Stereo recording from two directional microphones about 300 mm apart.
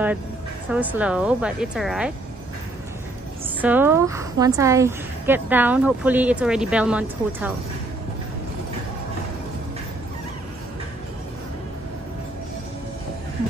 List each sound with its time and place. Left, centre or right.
0.7 s a woman's voice: centre
3.6 s a woman's voice: centre